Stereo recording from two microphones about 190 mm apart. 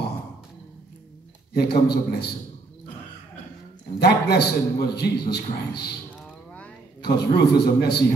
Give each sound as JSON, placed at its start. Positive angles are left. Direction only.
{"t": 1.5, "sound": "a man's voice", "side_deg": 55}
{"t": 4.0, "sound": "a man's voice", "side_deg": 60}
{"t": 7.0, "sound": "a man's voice", "side_deg": 60}